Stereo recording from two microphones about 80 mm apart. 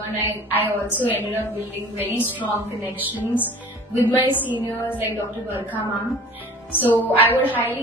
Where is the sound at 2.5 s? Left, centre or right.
Right.